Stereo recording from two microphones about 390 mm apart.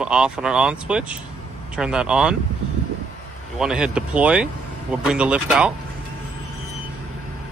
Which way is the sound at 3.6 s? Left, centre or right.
Centre.